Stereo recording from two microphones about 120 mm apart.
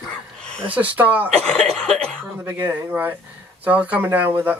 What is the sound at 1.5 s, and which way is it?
Cough, 5° left (ahead or behind).